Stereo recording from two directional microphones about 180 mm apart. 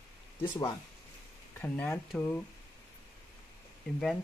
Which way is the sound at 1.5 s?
10° left (ahead or behind).